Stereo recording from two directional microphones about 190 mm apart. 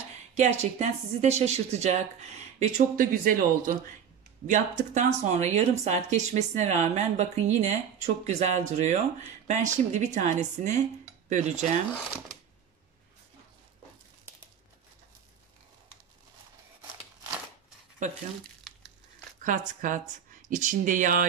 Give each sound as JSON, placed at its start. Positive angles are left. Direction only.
{"t": 0.4, "sound": "speech", "side_deg": -35}
{"t": 18.7, "sound": "crumpling", "side_deg": 0}
{"t": 19.4, "sound": "speech", "side_deg": -45}